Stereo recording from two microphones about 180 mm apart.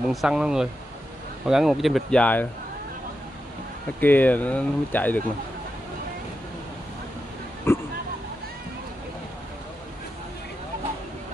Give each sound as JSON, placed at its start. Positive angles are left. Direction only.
{"t": 0.1, "sound": "speech", "side_deg": 0}
{"t": 4.0, "sound": "speech", "side_deg": 10}
{"t": 7.7, "sound": "a sound", "side_deg": 15}